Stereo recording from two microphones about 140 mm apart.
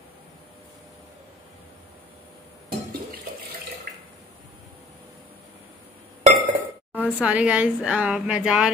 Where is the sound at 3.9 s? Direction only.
90° right.